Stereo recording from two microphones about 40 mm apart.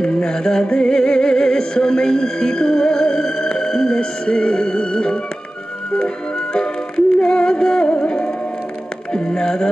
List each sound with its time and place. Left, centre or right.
0.0 s music: centre